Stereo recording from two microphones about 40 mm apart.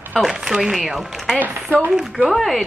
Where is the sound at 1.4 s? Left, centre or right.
Right.